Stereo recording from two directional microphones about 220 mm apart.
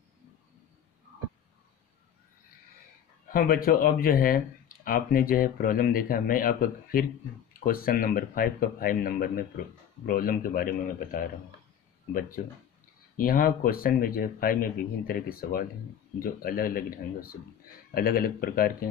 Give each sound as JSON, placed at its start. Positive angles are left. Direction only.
{"t": 3.3, "sound": "speech", "side_deg": 40}
{"t": 13.2, "sound": "speech", "side_deg": 40}